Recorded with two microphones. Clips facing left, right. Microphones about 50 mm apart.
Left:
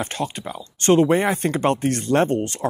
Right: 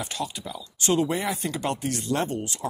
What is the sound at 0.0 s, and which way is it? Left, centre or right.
Speech, left.